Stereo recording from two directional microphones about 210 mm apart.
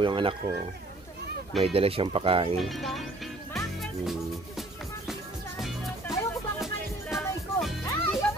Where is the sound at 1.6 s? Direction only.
25° right (ahead or behind).